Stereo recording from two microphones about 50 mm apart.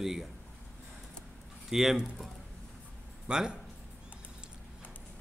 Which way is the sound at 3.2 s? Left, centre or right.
Centre.